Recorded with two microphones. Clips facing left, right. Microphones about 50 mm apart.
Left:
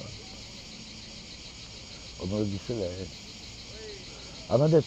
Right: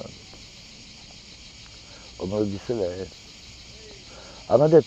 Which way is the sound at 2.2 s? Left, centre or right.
Right.